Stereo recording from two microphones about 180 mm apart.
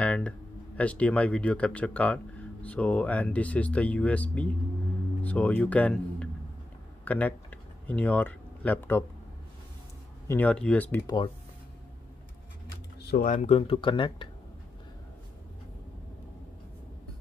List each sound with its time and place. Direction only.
0.0 s a sound: 5° left (ahead or behind)
0.7 s speech: 5° left (ahead or behind)
10.2 s speech: 10° left (ahead or behind)
13.0 s speech: 60° left (ahead or behind)
13.3 s speech: 35° left (ahead or behind)